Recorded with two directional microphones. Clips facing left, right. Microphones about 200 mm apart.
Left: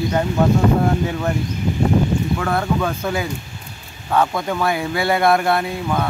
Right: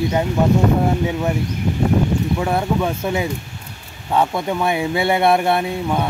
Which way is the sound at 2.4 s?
15° right (ahead or behind).